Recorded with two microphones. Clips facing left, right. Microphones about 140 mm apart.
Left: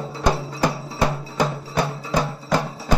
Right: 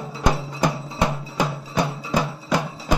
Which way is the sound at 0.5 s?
20° right (ahead or behind).